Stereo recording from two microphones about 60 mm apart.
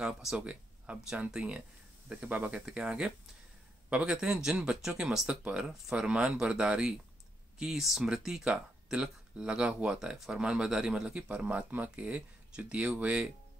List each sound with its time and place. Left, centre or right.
0.0 s speech: centre
2.6 s speech: centre